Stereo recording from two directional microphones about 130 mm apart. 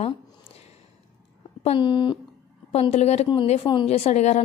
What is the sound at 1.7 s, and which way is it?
Speech, 35° left (ahead or behind).